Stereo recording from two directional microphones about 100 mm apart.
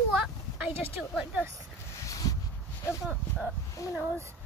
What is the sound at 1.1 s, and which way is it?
Speech, 10° right (ahead or behind).